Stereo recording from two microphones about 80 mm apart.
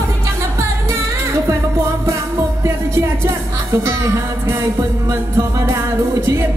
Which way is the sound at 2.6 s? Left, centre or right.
Right.